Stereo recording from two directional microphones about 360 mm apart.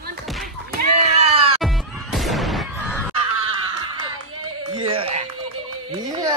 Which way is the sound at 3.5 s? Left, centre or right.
Centre.